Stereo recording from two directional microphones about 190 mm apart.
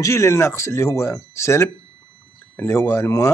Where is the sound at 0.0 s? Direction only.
15° left (ahead or behind).